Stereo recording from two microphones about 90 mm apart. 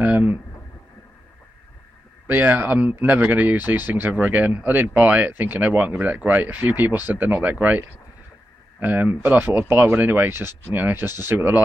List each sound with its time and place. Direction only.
0.0 s speech: 15° right (ahead or behind)
2.2 s speech: 20° right (ahead or behind)